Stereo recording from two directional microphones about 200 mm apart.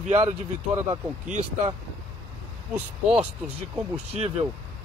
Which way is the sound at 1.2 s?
35° right (ahead or behind).